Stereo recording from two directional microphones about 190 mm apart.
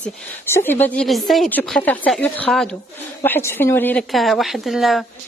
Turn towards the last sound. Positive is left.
turn(degrees=0)  # may be behind; listen again after turning